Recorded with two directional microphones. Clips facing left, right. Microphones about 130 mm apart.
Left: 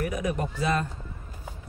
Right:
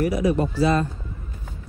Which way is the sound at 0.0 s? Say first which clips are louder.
Right 8 dB; 35° right (ahead or behind).